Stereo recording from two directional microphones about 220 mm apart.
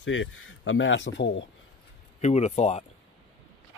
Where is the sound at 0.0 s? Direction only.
60° left (ahead or behind).